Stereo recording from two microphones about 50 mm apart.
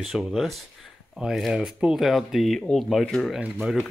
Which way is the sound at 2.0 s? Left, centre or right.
Centre.